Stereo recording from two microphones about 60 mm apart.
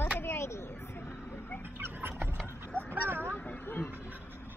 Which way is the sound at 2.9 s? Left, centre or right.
Right.